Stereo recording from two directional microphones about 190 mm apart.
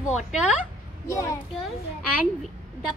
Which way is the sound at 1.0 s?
15° left (ahead or behind).